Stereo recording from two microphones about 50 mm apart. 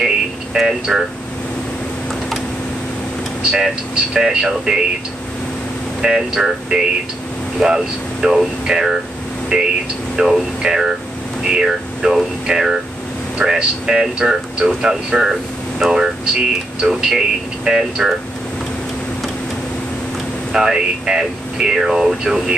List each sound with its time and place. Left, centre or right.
0.6 s speech: centre
3.5 s speech: centre
6.0 s speech: centre
20.5 s speech: centre